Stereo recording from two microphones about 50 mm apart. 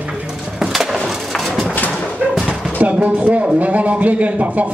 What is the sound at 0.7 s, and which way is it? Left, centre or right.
Wood, centre.